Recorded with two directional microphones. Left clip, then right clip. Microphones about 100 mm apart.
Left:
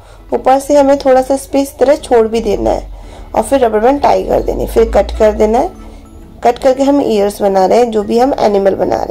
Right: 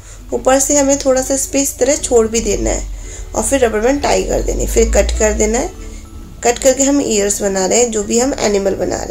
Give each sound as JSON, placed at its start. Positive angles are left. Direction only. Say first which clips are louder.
{"t": 0.4, "sound": "a woman's voice", "louder": "left 4 dB", "side_deg": 40}